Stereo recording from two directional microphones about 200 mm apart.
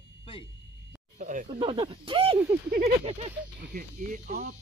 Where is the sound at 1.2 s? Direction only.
40° right (ahead or behind).